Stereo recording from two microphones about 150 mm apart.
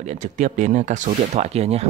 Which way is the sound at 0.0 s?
50° right (ahead or behind).